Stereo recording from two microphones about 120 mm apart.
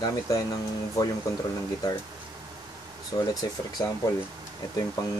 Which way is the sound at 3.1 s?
35° left (ahead or behind).